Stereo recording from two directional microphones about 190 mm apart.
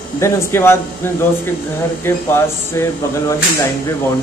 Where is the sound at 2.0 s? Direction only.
15° left (ahead or behind).